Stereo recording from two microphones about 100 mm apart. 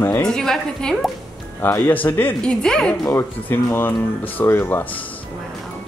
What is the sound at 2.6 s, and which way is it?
Speech, 5° left (ahead or behind).